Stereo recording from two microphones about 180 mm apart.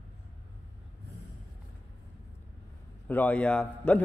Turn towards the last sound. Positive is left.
turn(degrees=5)  # may be behind; listen again after turning